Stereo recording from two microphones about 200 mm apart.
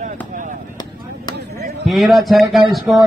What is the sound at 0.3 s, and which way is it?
Chop, 40° right (ahead or behind).